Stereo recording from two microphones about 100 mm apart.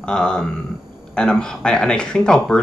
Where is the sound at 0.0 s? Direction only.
10° left (ahead or behind).